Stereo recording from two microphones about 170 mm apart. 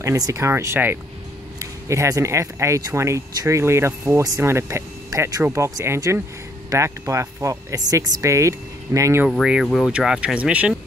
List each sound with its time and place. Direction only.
0.0 s speech: 20° right (ahead or behind)
9.3 s speech: 5° right (ahead or behind)